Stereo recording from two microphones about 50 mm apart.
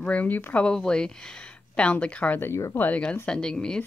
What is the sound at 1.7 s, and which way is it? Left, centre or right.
Speech, left.